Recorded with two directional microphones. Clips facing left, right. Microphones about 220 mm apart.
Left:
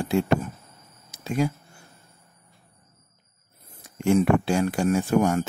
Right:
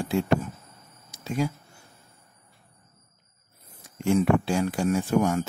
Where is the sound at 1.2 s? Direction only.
65° left (ahead or behind).